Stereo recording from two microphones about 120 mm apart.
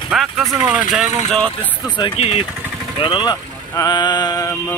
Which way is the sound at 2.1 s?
60° left (ahead or behind).